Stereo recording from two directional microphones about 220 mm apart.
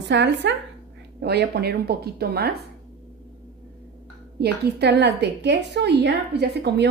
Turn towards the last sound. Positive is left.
turn(degrees=-50)  # may be behind; listen again after turning